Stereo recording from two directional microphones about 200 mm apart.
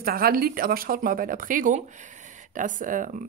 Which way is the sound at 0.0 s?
50° right (ahead or behind).